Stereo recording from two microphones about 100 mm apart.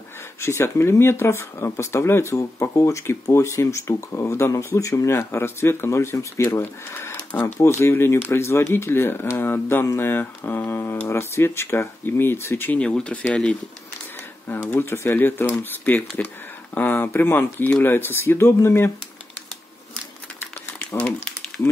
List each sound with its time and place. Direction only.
0.4 s speech: 30° left (ahead or behind)
20.8 s crumpling: 15° left (ahead or behind)